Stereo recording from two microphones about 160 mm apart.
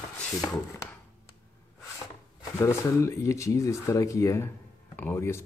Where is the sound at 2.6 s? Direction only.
20° left (ahead or behind).